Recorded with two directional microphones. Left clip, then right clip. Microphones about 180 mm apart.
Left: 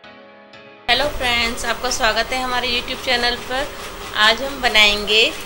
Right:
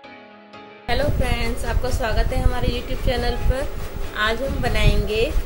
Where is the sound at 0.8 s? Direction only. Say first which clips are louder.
Left 6 dB; 35° right (ahead or behind).